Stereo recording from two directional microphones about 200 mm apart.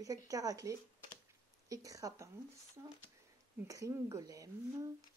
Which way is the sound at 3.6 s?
15° right (ahead or behind).